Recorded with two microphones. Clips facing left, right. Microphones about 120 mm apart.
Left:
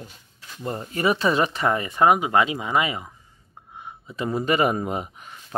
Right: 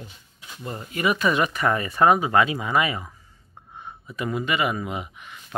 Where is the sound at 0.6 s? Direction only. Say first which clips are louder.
Left 2 dB; 30° left (ahead or behind).